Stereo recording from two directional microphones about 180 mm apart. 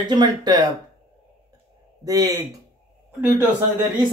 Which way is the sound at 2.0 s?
20° right (ahead or behind).